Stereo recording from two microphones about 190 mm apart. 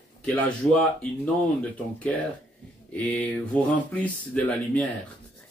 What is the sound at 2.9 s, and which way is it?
Speech, 5° left (ahead or behind).